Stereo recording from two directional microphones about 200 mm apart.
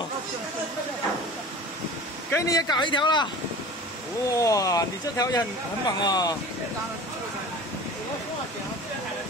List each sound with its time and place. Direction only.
2.3 s a man's voice: 15° left (ahead or behind)
4.3 s a man's voice: 15° left (ahead or behind)